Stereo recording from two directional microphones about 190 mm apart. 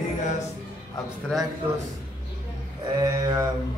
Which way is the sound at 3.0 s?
20° right (ahead or behind).